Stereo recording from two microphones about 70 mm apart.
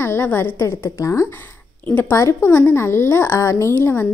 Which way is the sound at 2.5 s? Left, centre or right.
Left.